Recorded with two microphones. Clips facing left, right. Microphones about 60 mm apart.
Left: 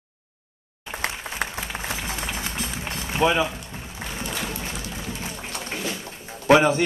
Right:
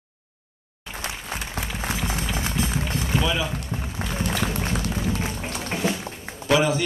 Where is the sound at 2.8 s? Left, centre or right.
Left.